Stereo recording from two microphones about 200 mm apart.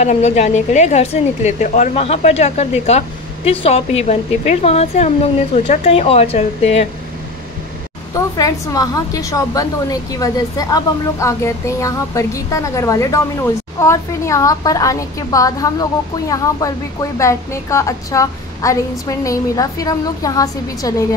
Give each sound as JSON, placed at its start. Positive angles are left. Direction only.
{"t": 0.0, "sound": "speech", "side_deg": 35}
{"t": 8.1, "sound": "a woman's voice", "side_deg": 15}